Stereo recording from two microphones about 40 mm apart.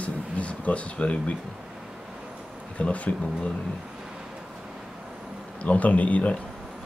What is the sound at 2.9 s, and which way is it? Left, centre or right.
Speech, left.